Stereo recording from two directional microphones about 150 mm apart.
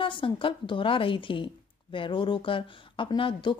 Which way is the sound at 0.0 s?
35° left (ahead or behind).